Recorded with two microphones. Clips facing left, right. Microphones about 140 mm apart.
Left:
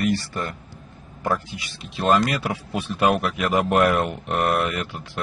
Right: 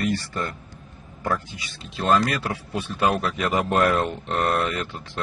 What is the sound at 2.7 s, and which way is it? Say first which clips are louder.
Speech: left 2 dB; 15° left (ahead or behind).